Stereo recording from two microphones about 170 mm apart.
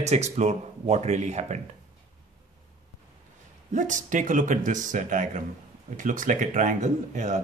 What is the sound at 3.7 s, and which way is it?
Speech, 50° right (ahead or behind).